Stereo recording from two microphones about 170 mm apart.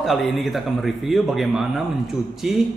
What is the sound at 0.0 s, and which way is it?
A man's voice, centre (ahead or behind).